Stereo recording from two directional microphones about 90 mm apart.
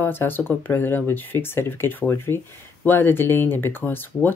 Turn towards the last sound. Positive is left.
turn(degrees=20)  # may be behind; listen again after turning